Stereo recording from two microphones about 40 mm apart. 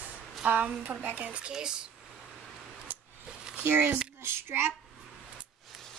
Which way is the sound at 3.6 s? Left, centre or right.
Right.